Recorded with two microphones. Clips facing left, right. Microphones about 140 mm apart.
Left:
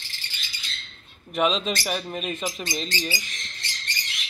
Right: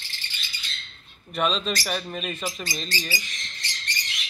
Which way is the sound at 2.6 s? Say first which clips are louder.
Left 3 dB; 20° left (ahead or behind).